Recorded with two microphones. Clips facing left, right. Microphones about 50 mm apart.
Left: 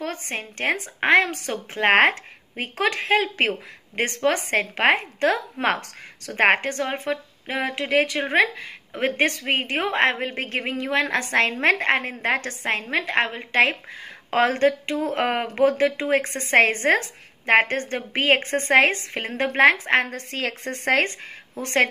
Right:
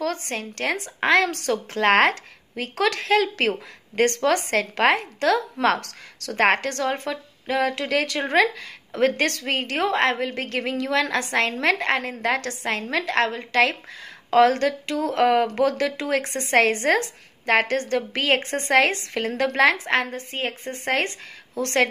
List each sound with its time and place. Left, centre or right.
0.0 s a woman's voice: left
20.2 s a woman's voice: left
20.7 s speech: left
21.6 s a woman's voice: left